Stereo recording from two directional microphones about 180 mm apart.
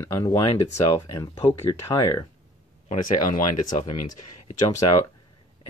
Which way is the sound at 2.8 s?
35° left (ahead or behind).